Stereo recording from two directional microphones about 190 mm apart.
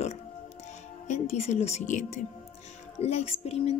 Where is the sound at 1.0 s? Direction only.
35° left (ahead or behind).